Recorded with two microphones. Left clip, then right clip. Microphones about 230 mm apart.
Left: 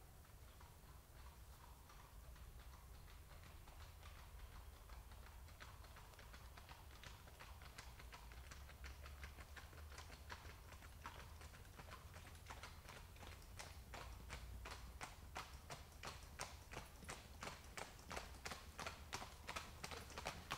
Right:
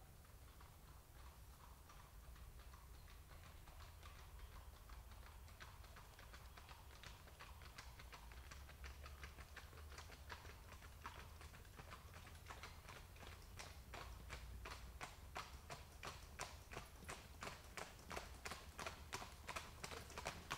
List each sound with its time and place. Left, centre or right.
6.5 s typing: right